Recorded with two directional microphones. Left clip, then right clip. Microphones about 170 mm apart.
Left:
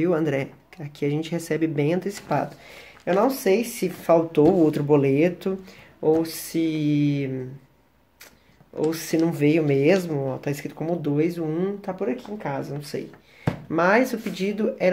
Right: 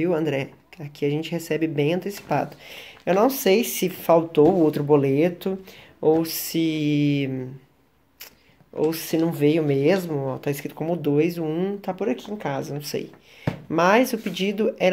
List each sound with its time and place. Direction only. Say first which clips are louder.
0.0 s speech: even; 5° right (ahead or behind)
2.7 s speech: right 1 dB; 35° right (ahead or behind)
4.0 s speech: right 1 dB; 15° right (ahead or behind)
5.9 s speech: right 1 dB; 30° right (ahead or behind)
8.7 s speech: right 1 dB; 15° right (ahead or behind)